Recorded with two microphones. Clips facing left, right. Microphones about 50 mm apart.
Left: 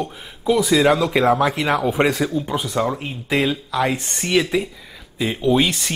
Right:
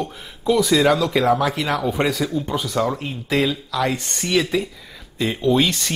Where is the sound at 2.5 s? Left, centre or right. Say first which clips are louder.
Even; centre.